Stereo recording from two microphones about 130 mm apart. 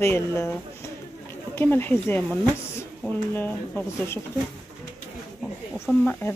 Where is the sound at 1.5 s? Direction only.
15° left (ahead or behind).